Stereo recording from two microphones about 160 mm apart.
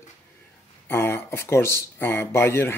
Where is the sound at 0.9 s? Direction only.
15° left (ahead or behind).